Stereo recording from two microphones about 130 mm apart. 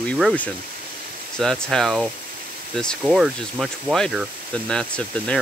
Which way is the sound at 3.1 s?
5° right (ahead or behind).